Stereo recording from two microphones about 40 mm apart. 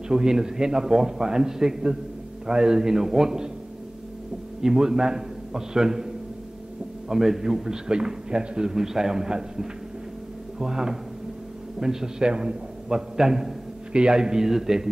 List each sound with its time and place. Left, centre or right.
0.1 s a man's voice: centre
4.6 s a man's voice: centre
8.7 s a man's voice: centre